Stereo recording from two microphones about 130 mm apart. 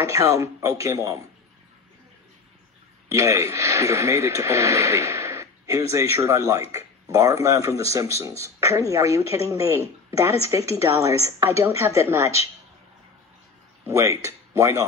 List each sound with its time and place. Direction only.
0.0 s speech: 25° right (ahead or behind)
3.1 s speech: 25° right (ahead or behind)
13.8 s speech: 20° right (ahead or behind)